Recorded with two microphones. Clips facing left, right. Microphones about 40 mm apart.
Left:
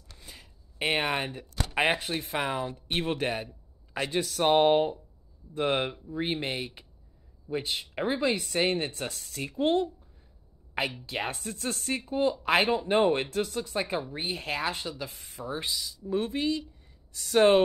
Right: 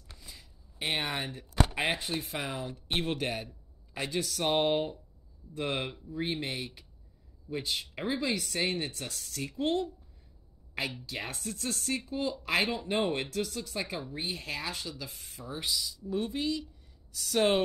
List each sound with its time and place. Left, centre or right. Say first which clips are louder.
0.2 s a sound: left 6 dB; left
1.8 s speech: left 5 dB; left
11.1 s speech: left 5 dB; left